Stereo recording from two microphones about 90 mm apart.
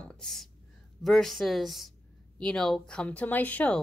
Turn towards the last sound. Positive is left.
turn(degrees=15)  # may be behind; listen again after turning